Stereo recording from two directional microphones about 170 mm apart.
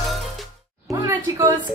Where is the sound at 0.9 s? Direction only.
20° right (ahead or behind).